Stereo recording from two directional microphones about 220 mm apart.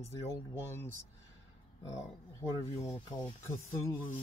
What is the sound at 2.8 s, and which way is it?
Speech, 20° left (ahead or behind).